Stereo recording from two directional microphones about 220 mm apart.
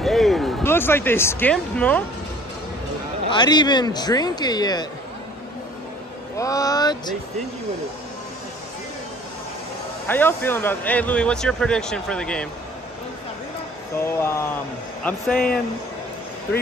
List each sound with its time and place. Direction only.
0.0 s speech: centre (ahead or behind)
3.3 s speech: 20° left (ahead or behind)
6.3 s speech: 15° left (ahead or behind)
10.0 s speech: 10° left (ahead or behind)
14.0 s speech: 10° left (ahead or behind)